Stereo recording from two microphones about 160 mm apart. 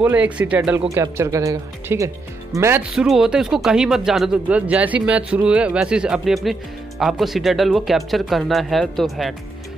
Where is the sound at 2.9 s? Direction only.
Centre (ahead or behind).